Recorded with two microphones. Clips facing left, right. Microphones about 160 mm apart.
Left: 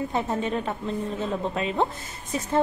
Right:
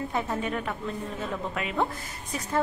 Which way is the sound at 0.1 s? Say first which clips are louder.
Left 3 dB; 25° left (ahead or behind).